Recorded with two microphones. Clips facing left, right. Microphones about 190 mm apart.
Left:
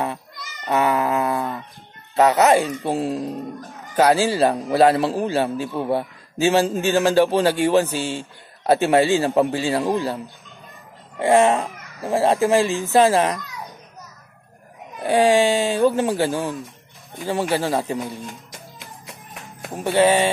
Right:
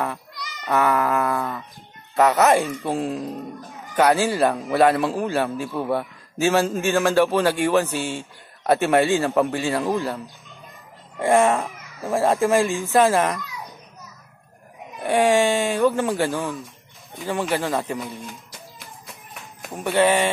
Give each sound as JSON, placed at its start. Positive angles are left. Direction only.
{"t": 0.7, "sound": "speech", "side_deg": 20}
{"t": 15.0, "sound": "speech", "side_deg": 30}
{"t": 19.6, "sound": "speech", "side_deg": 30}